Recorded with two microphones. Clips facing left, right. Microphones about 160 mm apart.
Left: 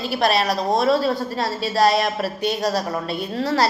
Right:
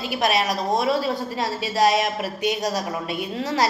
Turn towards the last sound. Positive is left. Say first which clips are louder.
# left 3 dB
turn(degrees=-15)  # may be behind; listen again after turning